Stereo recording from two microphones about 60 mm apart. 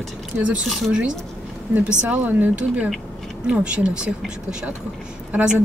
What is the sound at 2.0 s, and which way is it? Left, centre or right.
Speech, right.